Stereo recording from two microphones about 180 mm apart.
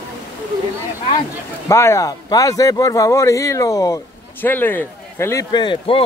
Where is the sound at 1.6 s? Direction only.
15° left (ahead or behind).